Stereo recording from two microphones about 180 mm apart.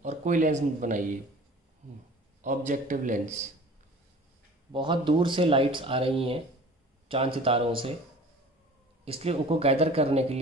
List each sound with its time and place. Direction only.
0.0 s speech: 40° right (ahead or behind)
2.4 s a man's voice: 45° right (ahead or behind)
4.7 s speech: 25° right (ahead or behind)
9.0 s speech: 35° right (ahead or behind)